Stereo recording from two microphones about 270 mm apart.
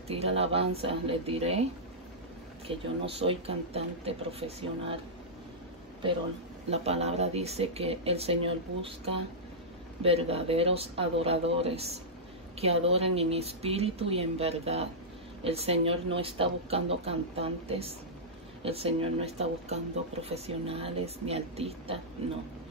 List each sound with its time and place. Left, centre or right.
0.1 s speech: right
2.7 s speech: right
6.7 s speech: right
10.0 s speech: right